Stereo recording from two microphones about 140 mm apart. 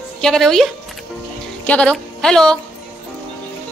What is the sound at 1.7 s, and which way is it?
Speech, 5° left (ahead or behind).